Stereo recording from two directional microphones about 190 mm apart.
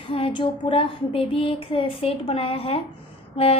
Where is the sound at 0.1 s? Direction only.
25° left (ahead or behind).